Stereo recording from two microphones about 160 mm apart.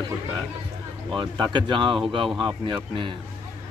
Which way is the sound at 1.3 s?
25° right (ahead or behind).